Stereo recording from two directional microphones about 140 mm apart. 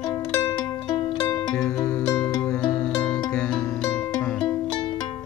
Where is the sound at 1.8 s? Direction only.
20° left (ahead or behind).